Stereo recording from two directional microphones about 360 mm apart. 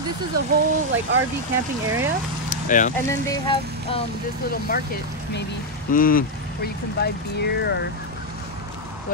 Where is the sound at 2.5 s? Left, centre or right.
Left.